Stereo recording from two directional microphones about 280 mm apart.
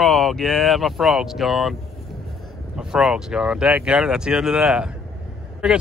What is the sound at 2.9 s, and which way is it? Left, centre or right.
Speech, centre.